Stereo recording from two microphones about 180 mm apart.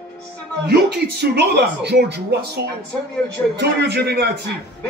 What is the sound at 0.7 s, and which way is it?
Speech, 65° right (ahead or behind).